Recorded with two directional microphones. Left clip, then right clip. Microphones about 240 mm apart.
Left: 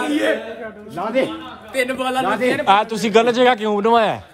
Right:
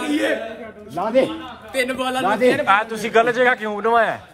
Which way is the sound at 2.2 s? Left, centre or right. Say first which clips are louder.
Right 4 dB; centre.